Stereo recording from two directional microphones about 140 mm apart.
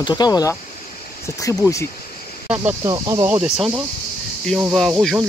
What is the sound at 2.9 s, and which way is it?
Speech, 30° right (ahead or behind).